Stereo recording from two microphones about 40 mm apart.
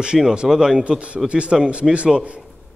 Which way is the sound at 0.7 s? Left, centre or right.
Right.